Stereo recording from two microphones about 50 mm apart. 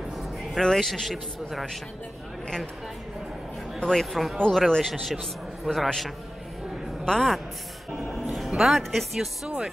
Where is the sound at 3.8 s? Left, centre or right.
Centre.